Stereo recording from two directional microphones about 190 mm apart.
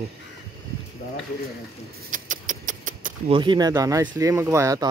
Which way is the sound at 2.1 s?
45° right (ahead or behind).